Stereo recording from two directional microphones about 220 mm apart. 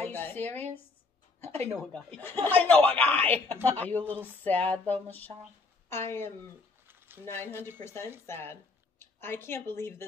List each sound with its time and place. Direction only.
0.0 s speech: 10° left (ahead or behind)
6.9 s a sound: 10° right (ahead or behind)
7.2 s a woman's voice: 10° left (ahead or behind)